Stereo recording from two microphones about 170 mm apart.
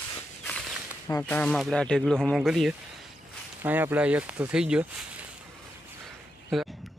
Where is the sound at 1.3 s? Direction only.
5° left (ahead or behind).